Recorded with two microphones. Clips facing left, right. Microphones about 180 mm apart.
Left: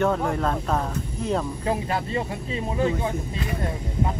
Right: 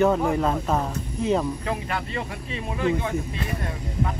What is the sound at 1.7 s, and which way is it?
Speech, 25° left (ahead or behind).